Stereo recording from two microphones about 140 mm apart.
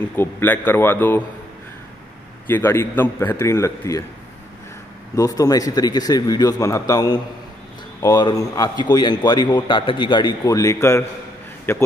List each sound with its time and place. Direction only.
0.1 s a man's voice: 15° left (ahead or behind)
2.4 s a man's voice: 15° left (ahead or behind)
5.1 s a man's voice: 25° left (ahead or behind)